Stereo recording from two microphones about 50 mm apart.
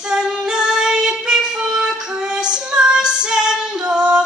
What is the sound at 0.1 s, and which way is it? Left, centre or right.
Female singing, centre.